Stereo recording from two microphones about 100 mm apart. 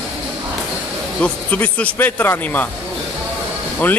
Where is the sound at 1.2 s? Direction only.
15° left (ahead or behind).